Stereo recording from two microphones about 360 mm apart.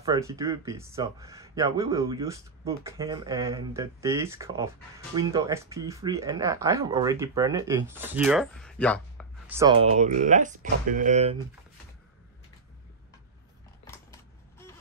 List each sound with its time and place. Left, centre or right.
0.0 s speech: centre
9.6 s speech: centre